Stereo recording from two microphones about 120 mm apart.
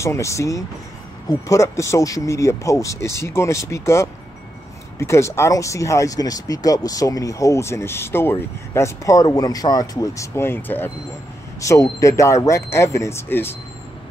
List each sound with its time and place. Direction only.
0.0 s speech: 25° left (ahead or behind)